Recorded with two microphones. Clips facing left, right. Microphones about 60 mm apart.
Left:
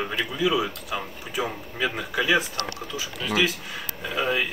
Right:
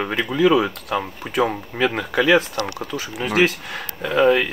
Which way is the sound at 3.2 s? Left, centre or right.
Right.